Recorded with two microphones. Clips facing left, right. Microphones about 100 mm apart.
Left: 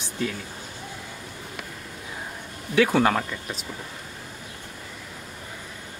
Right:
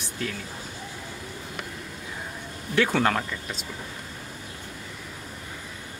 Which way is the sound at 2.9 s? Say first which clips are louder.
Left 3 dB; 15° left (ahead or behind).